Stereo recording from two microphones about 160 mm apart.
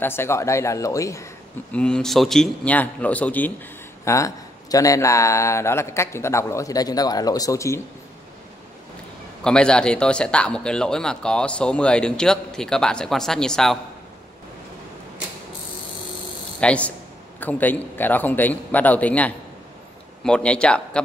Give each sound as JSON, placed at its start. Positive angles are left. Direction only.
{"t": 0.0, "sound": "speech", "side_deg": 15}
{"t": 1.7, "sound": "a man's voice", "side_deg": 5}
{"t": 9.4, "sound": "a man's voice", "side_deg": 5}
{"t": 16.5, "sound": "a man's voice", "side_deg": 10}